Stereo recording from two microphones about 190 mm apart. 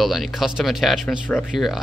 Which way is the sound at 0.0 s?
Centre (ahead or behind).